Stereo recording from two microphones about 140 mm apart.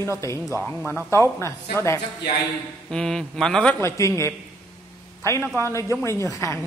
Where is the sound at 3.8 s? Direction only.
20° left (ahead or behind).